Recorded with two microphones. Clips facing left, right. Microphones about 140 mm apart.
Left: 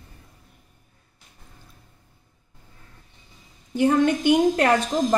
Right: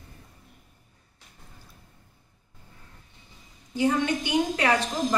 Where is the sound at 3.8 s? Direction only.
55° left (ahead or behind).